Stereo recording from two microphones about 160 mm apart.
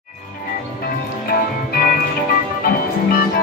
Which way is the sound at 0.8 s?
70° left (ahead or behind).